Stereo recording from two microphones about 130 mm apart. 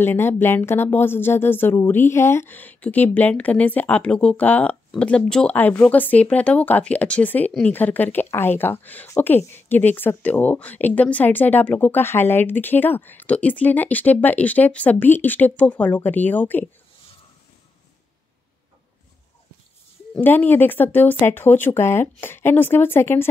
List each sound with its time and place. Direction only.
0.0 s speech: 15° left (ahead or behind)
20.2 s speech: 15° left (ahead or behind)